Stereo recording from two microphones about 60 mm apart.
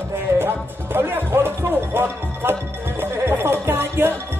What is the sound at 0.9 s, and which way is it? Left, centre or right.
Music, right.